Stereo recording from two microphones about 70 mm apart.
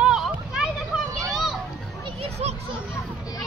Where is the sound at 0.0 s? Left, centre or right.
Centre.